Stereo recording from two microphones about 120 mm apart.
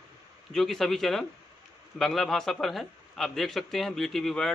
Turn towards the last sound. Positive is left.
turn(degrees=5)  # may be behind; listen again after turning